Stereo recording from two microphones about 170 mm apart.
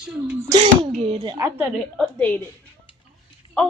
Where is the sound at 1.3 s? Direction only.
15° right (ahead or behind).